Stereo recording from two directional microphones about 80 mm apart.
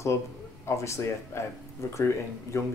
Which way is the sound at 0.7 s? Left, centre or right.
Left.